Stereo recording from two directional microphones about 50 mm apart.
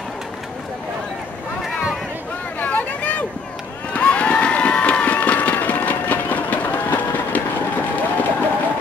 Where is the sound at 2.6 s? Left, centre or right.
Left.